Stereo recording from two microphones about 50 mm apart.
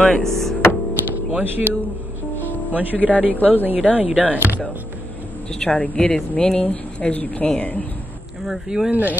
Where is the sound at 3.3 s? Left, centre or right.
Left.